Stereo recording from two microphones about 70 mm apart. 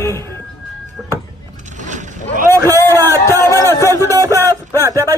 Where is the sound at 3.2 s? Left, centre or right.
Left.